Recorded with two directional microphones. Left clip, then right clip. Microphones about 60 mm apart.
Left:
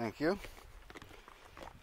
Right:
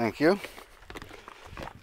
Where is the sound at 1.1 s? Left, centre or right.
Centre.